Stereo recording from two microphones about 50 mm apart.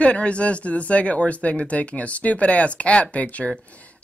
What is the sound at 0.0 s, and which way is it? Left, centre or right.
Speech, left.